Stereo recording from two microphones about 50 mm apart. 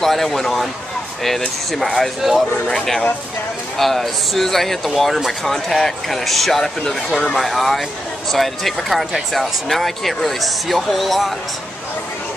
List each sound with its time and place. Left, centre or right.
0.0 s speech: centre
1.7 s speech: centre